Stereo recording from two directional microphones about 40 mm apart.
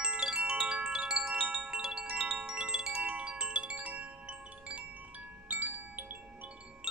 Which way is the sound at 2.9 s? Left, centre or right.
Right.